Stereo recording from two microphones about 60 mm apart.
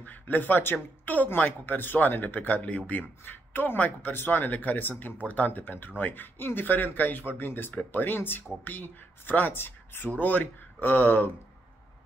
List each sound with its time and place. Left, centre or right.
0.0 s speech: left
10.1 s speech: left